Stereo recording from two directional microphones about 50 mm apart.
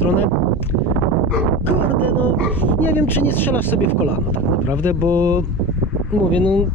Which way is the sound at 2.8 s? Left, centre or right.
Left.